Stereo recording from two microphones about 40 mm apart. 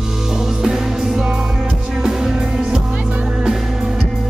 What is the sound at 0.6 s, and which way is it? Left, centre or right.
Music, centre.